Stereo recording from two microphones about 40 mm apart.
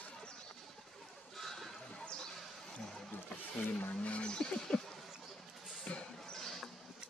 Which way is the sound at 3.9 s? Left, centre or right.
Left.